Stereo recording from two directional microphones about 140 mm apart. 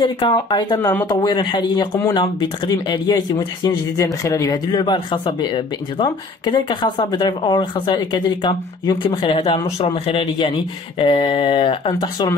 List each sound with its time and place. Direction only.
0.0 s speech: 35° left (ahead or behind)
12.0 s speech: 30° left (ahead or behind)